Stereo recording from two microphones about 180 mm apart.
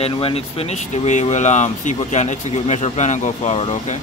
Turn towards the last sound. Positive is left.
turn(degrees=35)  # may be behind; listen again after turning